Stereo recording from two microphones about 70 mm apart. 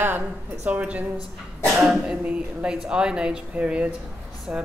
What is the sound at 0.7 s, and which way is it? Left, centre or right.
Speech, right.